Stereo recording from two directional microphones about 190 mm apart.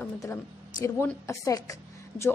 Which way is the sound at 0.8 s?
15° left (ahead or behind).